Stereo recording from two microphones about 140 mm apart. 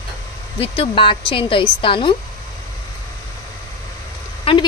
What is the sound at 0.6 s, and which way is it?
Speech, 40° left (ahead or behind).